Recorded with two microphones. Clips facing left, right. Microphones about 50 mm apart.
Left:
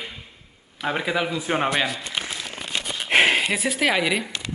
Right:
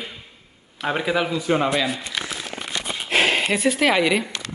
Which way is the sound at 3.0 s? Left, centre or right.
Left.